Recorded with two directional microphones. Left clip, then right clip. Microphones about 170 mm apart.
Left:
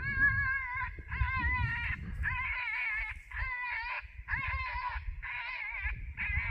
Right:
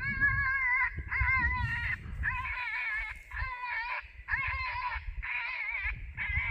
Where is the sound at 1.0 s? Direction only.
25° left (ahead or behind).